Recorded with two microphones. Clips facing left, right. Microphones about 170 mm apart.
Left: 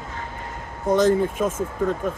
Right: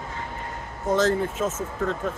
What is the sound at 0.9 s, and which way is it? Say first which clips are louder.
Speech: left 4 dB; 15° left (ahead or behind).